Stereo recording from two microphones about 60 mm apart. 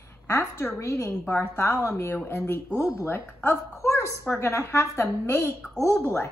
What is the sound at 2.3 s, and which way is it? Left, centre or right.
A woman's voice, left.